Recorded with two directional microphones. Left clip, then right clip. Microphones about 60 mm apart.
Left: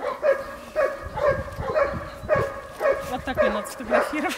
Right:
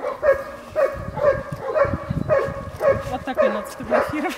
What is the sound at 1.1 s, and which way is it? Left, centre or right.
Bow-wow, left.